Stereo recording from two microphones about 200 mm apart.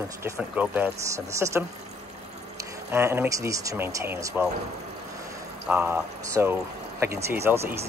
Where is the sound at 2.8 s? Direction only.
10° right (ahead or behind).